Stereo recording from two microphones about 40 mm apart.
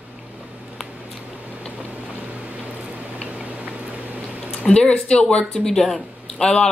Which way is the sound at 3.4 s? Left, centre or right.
Right.